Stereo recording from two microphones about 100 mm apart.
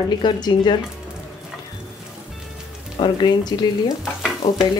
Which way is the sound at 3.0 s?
45° left (ahead or behind).